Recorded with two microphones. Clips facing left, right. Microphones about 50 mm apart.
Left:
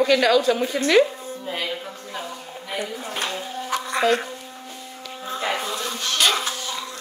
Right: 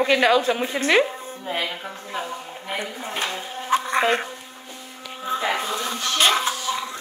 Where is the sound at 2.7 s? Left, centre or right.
Right.